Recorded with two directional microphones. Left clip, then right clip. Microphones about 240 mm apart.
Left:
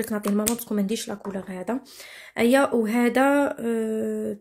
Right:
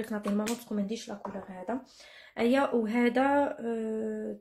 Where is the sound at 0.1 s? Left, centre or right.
Left.